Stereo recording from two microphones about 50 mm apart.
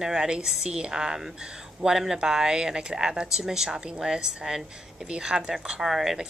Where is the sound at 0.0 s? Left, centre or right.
Centre.